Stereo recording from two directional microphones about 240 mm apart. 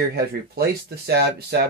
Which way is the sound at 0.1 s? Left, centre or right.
Right.